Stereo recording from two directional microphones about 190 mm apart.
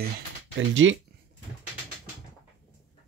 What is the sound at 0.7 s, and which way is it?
Speech, 90° right.